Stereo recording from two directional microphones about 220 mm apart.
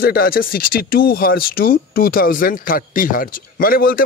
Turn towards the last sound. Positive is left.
turn(degrees=40)  # may be behind; listen again after turning